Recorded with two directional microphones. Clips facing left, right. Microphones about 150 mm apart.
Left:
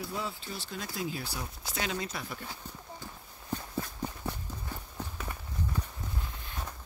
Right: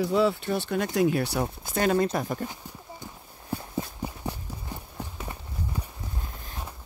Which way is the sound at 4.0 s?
15° right (ahead or behind).